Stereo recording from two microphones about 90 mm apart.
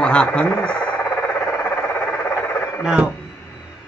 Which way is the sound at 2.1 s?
25° left (ahead or behind).